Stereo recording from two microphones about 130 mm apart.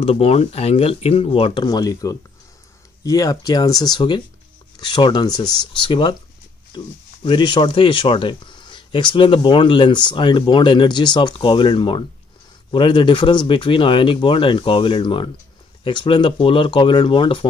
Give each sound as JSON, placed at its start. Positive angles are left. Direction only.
{"t": 0.0, "sound": "speech", "side_deg": 50}